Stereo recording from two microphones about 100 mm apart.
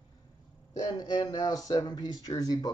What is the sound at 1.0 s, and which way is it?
Speech, 45° left (ahead or behind).